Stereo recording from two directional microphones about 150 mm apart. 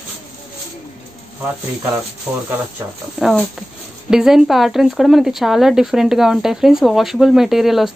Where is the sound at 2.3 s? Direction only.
30° right (ahead or behind).